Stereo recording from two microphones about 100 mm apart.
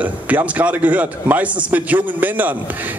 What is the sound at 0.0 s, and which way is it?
A man's voice, 15° right (ahead or behind).